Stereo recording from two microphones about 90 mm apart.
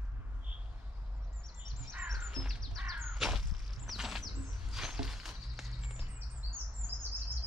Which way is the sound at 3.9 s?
5° right (ahead or behind).